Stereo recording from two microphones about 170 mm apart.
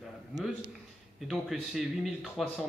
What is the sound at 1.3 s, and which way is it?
Speech, centre (ahead or behind).